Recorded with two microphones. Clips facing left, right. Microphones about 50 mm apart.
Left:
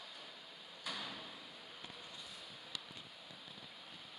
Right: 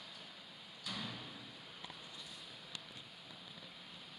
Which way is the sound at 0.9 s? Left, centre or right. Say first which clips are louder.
Left 1 dB; left.